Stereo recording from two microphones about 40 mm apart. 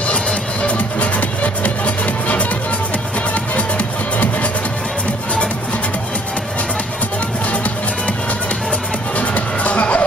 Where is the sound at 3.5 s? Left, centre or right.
Left.